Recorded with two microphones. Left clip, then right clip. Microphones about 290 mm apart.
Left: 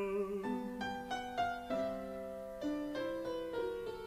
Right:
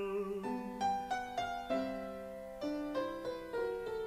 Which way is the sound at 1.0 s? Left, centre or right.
Right.